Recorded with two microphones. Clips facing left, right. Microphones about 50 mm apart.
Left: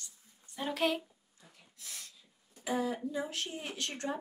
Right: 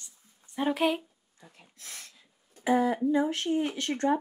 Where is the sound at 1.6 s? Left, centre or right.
Right.